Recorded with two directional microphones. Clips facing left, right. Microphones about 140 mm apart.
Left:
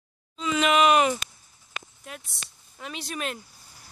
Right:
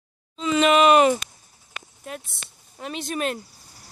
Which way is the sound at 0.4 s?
40° right (ahead or behind).